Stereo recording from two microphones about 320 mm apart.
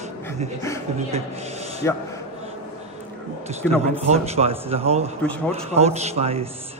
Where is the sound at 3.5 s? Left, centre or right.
Centre.